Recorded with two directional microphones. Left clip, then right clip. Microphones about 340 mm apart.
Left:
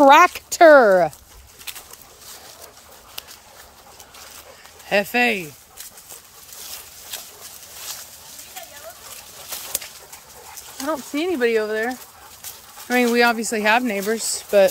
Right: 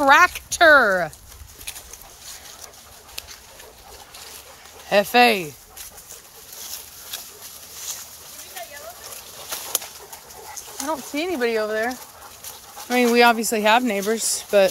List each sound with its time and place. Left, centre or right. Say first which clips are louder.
0.0 s speech: left 3 dB; centre
4.8 s speech: right 3 dB; centre
10.8 s speech: left 2 dB; centre